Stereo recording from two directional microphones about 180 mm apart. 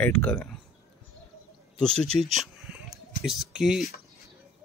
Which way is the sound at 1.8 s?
5° left (ahead or behind).